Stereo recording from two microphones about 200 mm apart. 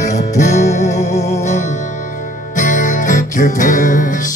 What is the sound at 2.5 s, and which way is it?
Music, 40° left (ahead or behind).